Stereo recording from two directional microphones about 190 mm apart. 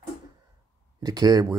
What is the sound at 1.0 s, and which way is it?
Speech, 20° right (ahead or behind).